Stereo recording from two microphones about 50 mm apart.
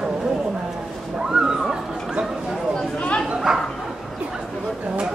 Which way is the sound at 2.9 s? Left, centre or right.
Left.